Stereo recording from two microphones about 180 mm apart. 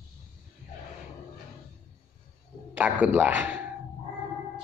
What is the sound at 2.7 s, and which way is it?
Speech, 10° right (ahead or behind).